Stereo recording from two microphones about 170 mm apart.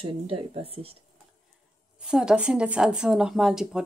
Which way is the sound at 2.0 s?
5° right (ahead or behind).